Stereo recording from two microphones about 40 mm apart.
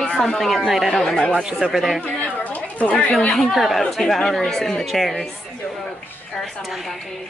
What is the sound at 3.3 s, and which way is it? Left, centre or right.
Speech, centre.